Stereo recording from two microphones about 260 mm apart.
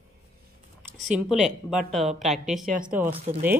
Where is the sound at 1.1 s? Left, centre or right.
Centre.